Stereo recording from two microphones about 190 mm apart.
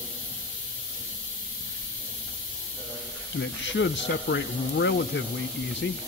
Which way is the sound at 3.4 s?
70° left (ahead or behind).